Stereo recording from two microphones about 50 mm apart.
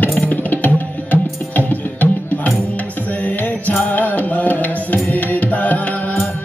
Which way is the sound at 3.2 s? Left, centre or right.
Left.